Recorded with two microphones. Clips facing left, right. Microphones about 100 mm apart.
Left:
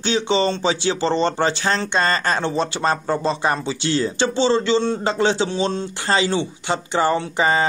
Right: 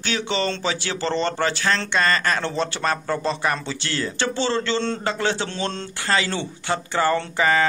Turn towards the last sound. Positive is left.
turn(degrees=25)  # may be behind; listen again after turning